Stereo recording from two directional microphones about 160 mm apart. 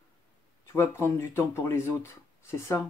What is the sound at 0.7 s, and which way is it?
Speech, 15° left (ahead or behind).